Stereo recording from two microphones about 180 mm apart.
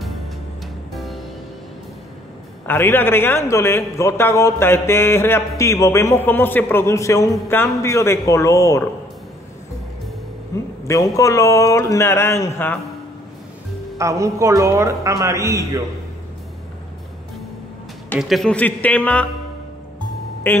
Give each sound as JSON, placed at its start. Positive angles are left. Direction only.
{"t": 0.9, "sound": "music", "side_deg": 0}
{"t": 2.6, "sound": "a man's voice", "side_deg": 10}
{"t": 10.5, "sound": "a man's voice", "side_deg": 15}
{"t": 13.9, "sound": "a man's voice", "side_deg": -15}
{"t": 18.2, "sound": "a man's voice", "side_deg": 0}
{"t": 20.5, "sound": "a man's voice", "side_deg": 10}